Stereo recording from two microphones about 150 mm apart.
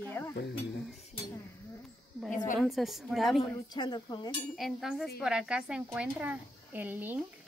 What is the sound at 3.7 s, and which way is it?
Speech, 30° left (ahead or behind).